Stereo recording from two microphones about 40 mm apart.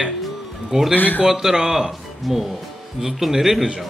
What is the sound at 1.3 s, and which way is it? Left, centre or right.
Speech, centre.